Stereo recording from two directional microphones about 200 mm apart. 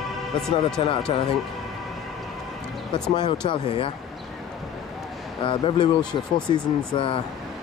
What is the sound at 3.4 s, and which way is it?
Speech, 25° left (ahead or behind).